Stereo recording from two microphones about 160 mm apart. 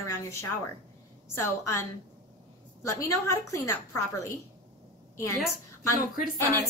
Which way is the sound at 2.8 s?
20° left (ahead or behind).